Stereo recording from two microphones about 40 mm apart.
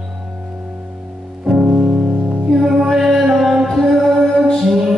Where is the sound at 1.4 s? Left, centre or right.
Centre.